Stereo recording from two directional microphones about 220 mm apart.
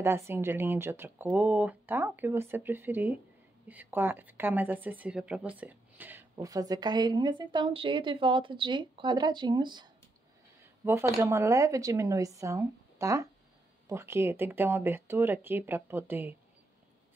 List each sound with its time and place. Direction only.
0.0 s a woman's voice: 10° right (ahead or behind)